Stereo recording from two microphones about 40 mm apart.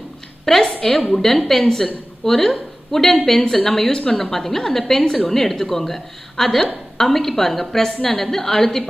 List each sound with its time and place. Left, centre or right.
0.5 s a woman's voice: centre